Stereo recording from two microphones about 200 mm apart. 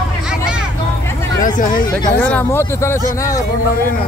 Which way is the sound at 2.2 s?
10° left (ahead or behind).